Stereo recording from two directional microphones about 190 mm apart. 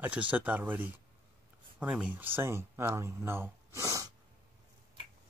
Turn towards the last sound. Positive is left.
turn(degrees=-15)  # may be behind; listen again after turning